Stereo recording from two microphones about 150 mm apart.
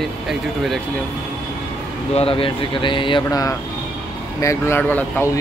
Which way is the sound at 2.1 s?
40° left (ahead or behind).